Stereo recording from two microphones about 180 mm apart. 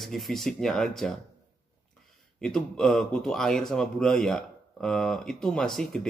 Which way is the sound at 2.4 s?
5° left (ahead or behind).